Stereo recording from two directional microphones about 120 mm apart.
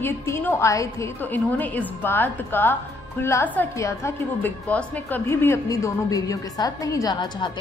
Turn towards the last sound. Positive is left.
turn(degrees=35)  # may be behind; listen again after turning